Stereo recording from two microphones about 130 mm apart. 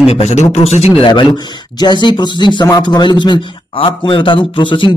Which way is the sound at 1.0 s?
40° left (ahead or behind).